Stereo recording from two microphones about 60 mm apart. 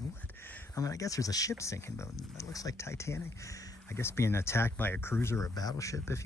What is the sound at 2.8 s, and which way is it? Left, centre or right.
Speech, left.